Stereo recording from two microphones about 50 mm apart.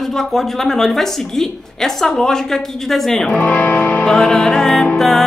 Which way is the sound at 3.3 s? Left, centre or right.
Left.